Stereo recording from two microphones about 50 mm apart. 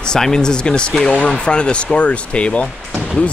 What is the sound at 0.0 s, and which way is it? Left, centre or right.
Speech, centre.